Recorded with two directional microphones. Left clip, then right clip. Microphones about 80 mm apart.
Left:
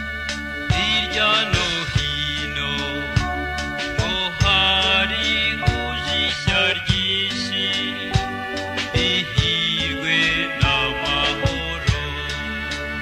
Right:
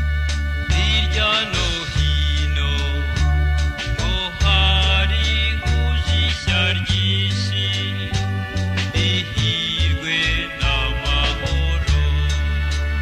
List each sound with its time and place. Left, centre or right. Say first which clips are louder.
0.7 s music: left 1 dB; right
4.1 s music: left 2 dB; right
8.9 s music: left 2 dB; right